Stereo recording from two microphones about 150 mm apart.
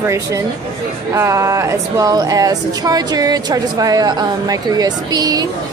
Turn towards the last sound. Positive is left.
turn(degrees=-25)  # may be behind; listen again after turning